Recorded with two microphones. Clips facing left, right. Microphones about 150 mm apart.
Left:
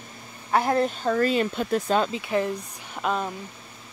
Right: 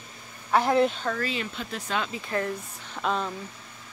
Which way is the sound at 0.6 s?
Centre (ahead or behind).